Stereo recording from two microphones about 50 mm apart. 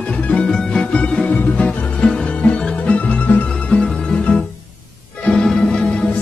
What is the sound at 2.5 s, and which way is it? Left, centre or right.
Music, left.